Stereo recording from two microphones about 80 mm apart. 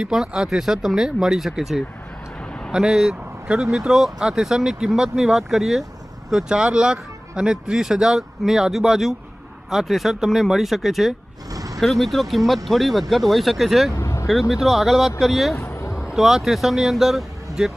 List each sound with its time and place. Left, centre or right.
0.0 s speech: centre
13.9 s vehicle: left
14.5 s speech: centre